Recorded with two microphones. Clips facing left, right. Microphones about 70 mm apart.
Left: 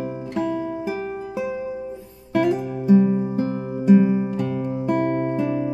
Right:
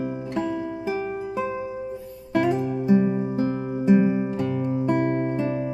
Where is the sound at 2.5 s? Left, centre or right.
Centre.